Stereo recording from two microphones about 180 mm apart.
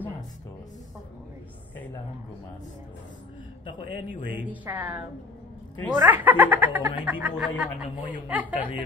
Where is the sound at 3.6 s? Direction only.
25° left (ahead or behind).